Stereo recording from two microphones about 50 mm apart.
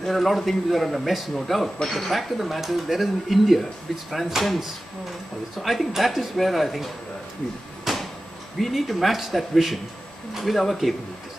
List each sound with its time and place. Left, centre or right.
0.0 s speech: centre
7.8 s a sound: centre
8.5 s speech: centre